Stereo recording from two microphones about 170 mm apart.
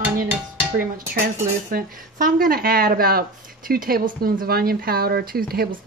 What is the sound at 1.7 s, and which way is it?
Speech, 60° right (ahead or behind).